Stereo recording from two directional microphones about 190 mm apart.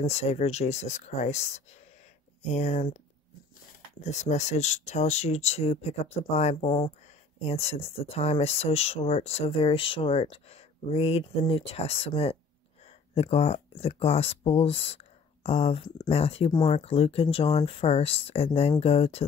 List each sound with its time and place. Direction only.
0.0 s speech: 35° left (ahead or behind)
2.5 s speech: 35° left (ahead or behind)
4.0 s speech: 35° left (ahead or behind)